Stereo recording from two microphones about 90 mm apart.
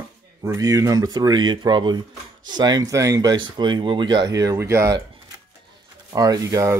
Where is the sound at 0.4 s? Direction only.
40° right (ahead or behind).